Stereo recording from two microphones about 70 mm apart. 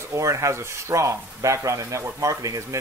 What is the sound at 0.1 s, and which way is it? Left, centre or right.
Speech, right.